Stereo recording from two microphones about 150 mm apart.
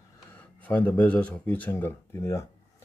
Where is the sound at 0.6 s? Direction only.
10° left (ahead or behind).